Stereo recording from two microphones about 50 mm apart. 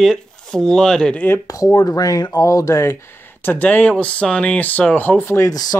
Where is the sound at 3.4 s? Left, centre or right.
Left.